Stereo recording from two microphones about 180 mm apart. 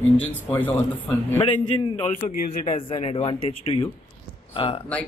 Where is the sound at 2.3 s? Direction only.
50° left (ahead or behind).